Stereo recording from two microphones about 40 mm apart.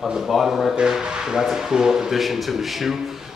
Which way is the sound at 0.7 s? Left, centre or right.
Centre.